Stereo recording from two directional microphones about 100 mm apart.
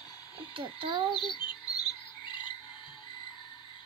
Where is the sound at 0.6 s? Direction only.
60° right (ahead or behind).